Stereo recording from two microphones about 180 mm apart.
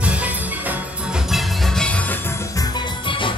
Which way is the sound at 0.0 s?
5° right (ahead or behind).